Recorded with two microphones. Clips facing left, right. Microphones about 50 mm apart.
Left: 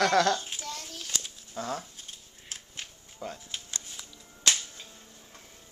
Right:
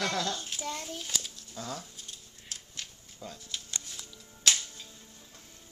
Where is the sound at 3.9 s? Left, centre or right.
Centre.